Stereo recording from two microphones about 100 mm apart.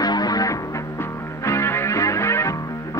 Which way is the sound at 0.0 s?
40° left (ahead or behind).